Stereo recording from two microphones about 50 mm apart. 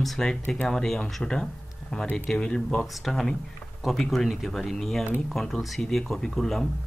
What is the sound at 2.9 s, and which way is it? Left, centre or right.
Speech, centre.